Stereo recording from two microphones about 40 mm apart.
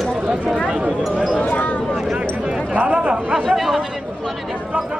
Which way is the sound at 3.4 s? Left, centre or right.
Centre.